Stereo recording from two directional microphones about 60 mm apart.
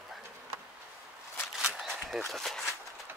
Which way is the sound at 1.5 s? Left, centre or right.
Centre.